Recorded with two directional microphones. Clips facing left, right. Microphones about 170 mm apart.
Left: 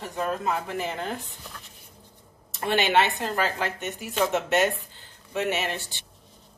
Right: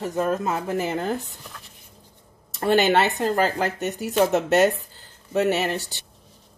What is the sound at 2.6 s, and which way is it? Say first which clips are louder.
Speech: right 4 dB; 40° right (ahead or behind).